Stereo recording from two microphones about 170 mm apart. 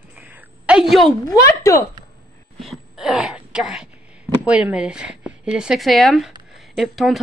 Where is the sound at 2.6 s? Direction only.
Centre (ahead or behind).